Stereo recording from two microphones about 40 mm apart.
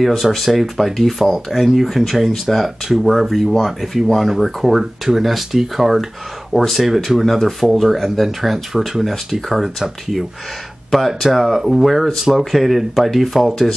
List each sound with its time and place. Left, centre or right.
0.0 s speech: centre
6.5 s speech: centre
7.2 s speech: centre